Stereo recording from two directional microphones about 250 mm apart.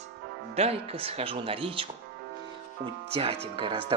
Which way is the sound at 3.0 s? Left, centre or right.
Right.